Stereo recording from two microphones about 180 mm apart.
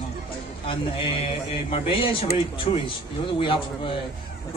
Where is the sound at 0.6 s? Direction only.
30° left (ahead or behind).